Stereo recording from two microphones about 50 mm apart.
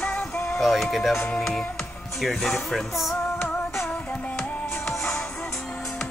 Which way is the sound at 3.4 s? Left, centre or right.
Left.